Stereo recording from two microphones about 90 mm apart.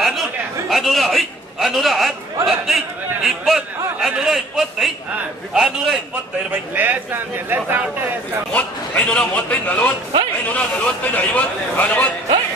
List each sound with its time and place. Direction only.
0.0 s chatter: centre (ahead or behind)
3.3 s a man's voice: 5° right (ahead or behind)
6.5 s a man's voice: 20° right (ahead or behind)
8.5 s a man's voice: 15° left (ahead or behind)